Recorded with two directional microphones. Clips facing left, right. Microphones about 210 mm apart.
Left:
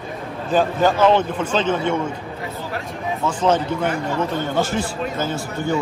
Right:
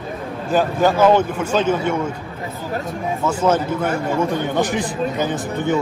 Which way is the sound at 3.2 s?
10° right (ahead or behind).